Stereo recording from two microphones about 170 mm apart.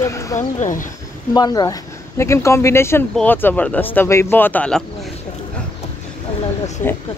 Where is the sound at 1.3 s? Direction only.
25° left (ahead or behind); by 4.8 s 10° left (ahead or behind).